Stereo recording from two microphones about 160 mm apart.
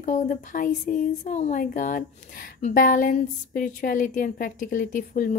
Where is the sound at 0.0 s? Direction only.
55° left (ahead or behind).